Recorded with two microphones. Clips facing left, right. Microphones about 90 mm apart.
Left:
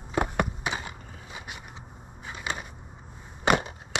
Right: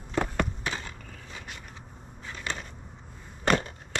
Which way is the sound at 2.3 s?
10° left (ahead or behind).